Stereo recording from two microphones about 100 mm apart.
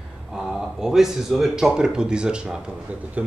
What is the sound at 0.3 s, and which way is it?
A man's voice, 5° right (ahead or behind).